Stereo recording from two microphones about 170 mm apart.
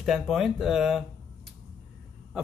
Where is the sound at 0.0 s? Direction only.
Centre (ahead or behind).